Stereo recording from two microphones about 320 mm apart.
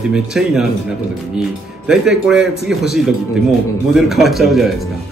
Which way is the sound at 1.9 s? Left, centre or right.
Centre.